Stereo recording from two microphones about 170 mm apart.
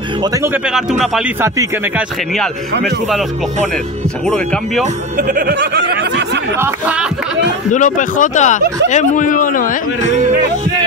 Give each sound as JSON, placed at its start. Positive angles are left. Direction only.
{"t": 0.7, "sound": "speech", "side_deg": -5}
{"t": 1.4, "sound": "a man's voice", "side_deg": -15}
{"t": 5.1, "sound": "music", "side_deg": -55}
{"t": 5.6, "sound": "a sound", "side_deg": -90}
{"t": 6.6, "sound": "a man's voice", "side_deg": -10}
{"t": 7.7, "sound": "speech", "side_deg": 50}